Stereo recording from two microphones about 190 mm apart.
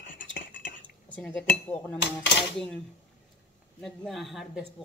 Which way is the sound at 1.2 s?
5° left (ahead or behind).